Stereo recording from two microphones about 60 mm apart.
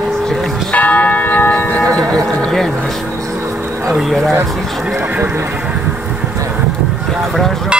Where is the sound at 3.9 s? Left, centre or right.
Centre.